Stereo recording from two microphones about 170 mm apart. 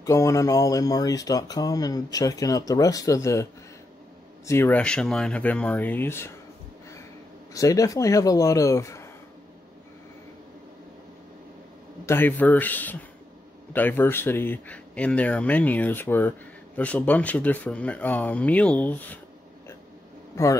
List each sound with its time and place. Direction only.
0.0 s speech: 20° left (ahead or behind)
4.5 s speech: 10° left (ahead or behind)
7.5 s speech: 20° left (ahead or behind)
12.1 s speech: 10° left (ahead or behind)
20.4 s speech: 20° left (ahead or behind)